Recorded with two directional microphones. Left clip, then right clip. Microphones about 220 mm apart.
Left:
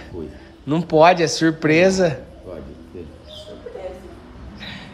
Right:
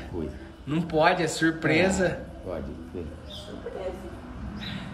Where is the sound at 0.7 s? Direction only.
20° left (ahead or behind).